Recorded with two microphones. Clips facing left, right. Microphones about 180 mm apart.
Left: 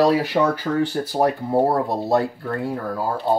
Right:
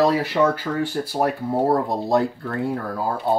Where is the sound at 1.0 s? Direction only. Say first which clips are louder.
Left 1 dB; 30° left (ahead or behind).